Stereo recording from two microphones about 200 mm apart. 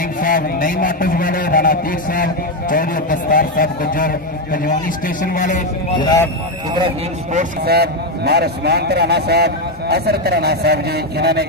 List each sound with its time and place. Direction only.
0.2 s a man's voice: 45° left (ahead or behind)
5.9 s speech: 20° left (ahead or behind)
7.6 s a man's voice: 50° right (ahead or behind)